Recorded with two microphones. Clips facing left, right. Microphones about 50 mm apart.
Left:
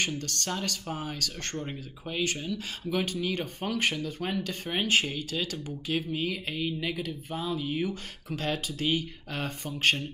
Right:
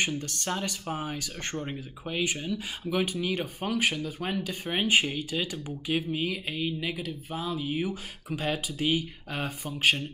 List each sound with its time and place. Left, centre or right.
0.0 s speech: centre